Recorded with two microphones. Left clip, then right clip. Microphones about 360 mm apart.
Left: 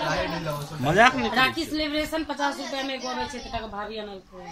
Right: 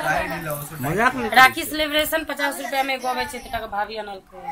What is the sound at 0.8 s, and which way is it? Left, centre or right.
Speech, centre.